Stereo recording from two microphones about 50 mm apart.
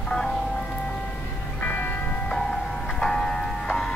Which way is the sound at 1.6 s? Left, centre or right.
Left.